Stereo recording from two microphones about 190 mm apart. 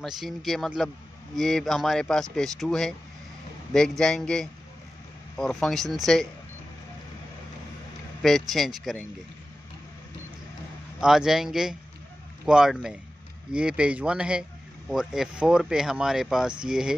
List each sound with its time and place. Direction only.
0.0 s speech: centre (ahead or behind)
8.2 s speech: centre (ahead or behind)
11.0 s speech: 5° right (ahead or behind)